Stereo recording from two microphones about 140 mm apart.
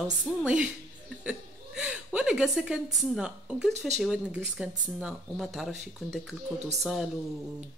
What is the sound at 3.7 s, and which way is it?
Speech, 55° right (ahead or behind).